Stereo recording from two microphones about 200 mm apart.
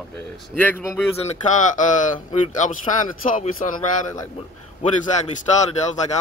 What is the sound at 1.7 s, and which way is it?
Speech, 40° left (ahead or behind).